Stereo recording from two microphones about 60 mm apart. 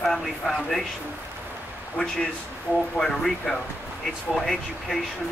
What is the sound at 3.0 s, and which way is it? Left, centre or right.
Speech, centre.